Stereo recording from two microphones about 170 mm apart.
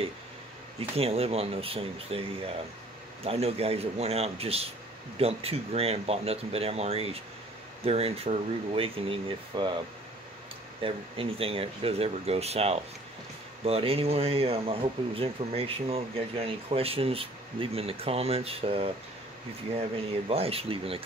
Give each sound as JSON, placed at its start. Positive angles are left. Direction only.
{"t": 0.7, "sound": "speech", "side_deg": -35}
{"t": 10.8, "sound": "speech", "side_deg": -30}
{"t": 20.2, "sound": "speech", "side_deg": -35}